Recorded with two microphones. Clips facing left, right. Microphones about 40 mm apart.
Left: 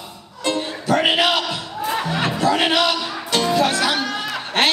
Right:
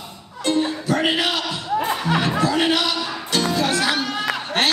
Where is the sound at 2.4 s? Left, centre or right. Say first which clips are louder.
Left 6 dB; left.